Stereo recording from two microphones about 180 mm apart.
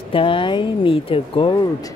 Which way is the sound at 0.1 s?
30° left (ahead or behind).